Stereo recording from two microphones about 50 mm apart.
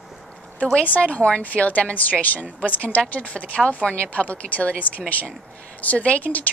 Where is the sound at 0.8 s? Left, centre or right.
Left.